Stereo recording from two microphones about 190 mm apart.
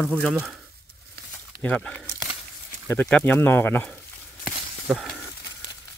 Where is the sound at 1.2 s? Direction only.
60° right (ahead or behind).